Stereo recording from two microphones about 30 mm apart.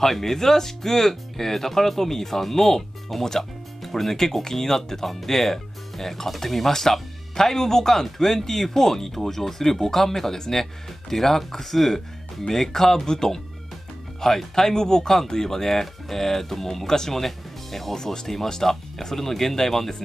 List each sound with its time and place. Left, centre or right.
0.0 s speech: centre
17.2 s speech: centre
17.9 s speech: centre